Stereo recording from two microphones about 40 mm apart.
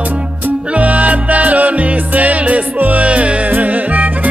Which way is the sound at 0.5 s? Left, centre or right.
Right.